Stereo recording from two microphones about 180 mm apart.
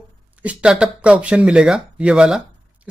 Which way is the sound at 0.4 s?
5° right (ahead or behind).